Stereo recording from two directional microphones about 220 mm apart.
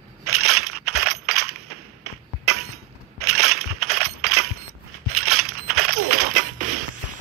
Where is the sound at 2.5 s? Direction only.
85° right.